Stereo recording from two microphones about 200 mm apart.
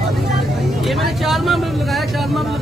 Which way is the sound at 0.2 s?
Centre (ahead or behind).